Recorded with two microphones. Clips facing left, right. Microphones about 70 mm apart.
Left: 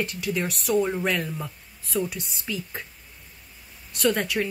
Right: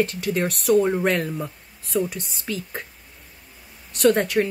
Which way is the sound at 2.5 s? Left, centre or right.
Right.